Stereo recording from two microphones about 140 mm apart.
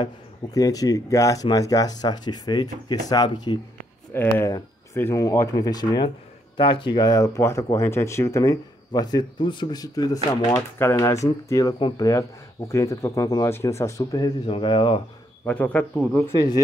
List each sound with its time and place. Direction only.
0.0 s speech: 25° left (ahead or behind)
4.1 s speech: 15° left (ahead or behind); by 15.0 s 35° left (ahead or behind)
15.4 s speech: 10° left (ahead or behind)